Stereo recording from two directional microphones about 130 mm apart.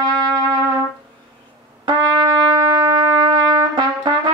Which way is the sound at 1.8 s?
30° right (ahead or behind).